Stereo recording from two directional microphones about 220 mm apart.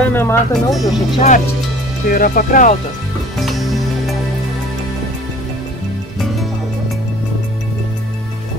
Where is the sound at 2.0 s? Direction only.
40° left (ahead or behind).